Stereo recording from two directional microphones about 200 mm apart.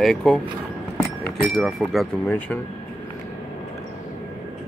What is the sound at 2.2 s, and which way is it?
Speech, 10° left (ahead or behind).